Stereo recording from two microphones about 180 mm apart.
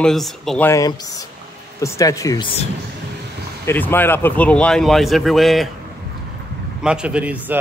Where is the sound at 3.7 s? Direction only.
10° left (ahead or behind).